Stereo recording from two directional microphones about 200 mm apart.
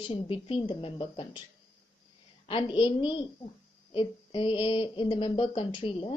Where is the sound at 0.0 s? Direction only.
25° left (ahead or behind).